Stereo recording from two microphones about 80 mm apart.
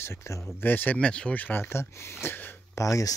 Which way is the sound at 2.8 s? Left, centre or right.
Left.